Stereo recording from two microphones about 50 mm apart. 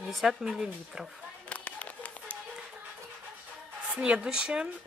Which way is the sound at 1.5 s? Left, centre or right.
Left.